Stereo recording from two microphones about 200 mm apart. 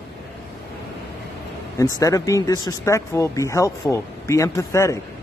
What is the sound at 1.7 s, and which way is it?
Speech, 15° left (ahead or behind).